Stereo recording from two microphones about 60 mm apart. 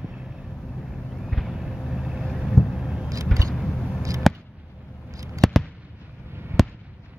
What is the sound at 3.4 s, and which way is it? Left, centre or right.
Vehicle, centre.